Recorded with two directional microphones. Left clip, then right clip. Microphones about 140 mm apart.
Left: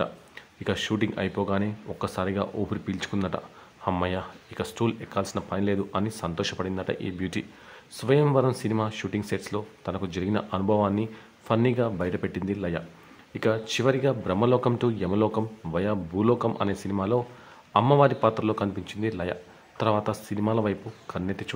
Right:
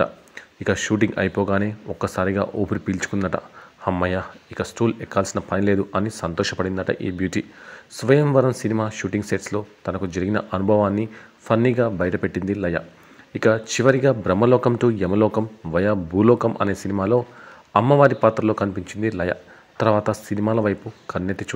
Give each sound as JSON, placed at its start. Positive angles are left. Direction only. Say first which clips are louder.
{"t": 0.7, "sound": "speech", "louder": "right 7 dB", "side_deg": -25}